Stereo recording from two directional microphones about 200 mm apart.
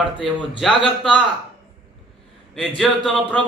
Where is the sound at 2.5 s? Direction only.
Centre (ahead or behind).